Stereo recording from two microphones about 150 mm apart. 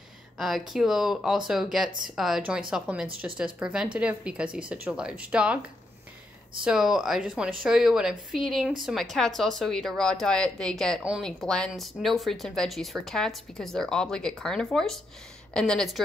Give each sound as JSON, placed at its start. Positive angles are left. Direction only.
{"t": 0.4, "sound": "speech", "side_deg": 0}
{"t": 6.6, "sound": "speech", "side_deg": -5}